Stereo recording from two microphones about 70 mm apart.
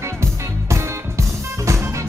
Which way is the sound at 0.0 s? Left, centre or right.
Right.